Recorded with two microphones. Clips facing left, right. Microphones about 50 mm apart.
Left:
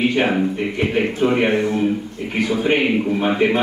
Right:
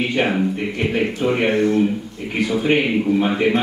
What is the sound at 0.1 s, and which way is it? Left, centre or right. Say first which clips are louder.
A man's voice: left 1 dB; centre.